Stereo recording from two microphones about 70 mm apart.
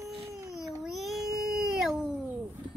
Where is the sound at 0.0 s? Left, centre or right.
Right.